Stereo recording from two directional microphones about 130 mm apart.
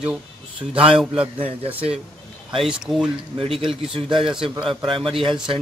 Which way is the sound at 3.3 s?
45° right (ahead or behind).